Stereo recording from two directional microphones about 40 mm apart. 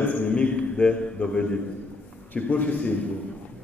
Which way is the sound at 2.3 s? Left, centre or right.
Left.